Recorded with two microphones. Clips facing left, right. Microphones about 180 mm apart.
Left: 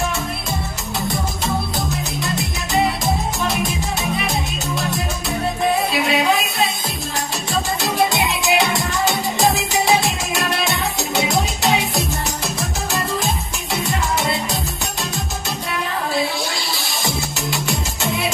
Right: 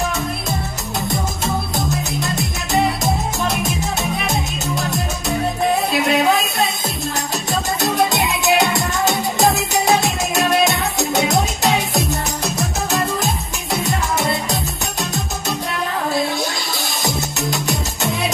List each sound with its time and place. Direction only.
2.2 s music: centre (ahead or behind)
6.0 s a sound: 45° right (ahead or behind)
8.2 s music: centre (ahead or behind)
11.3 s music: centre (ahead or behind)